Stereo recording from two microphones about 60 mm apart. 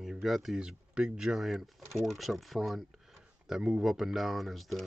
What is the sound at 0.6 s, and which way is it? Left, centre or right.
Speech, centre.